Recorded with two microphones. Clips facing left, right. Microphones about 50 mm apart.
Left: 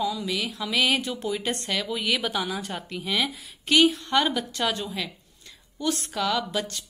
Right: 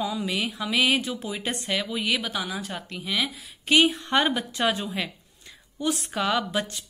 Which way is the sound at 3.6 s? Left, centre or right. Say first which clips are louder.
Even; right.